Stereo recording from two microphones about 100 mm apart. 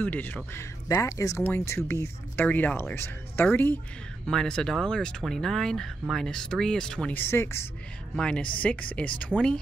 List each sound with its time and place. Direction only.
0.0 s speech: 20° left (ahead or behind)
0.8 s speech: 30° left (ahead or behind)
4.3 s speech: 5° left (ahead or behind)
7.2 s speech: 25° left (ahead or behind)
8.2 s speech: 10° left (ahead or behind)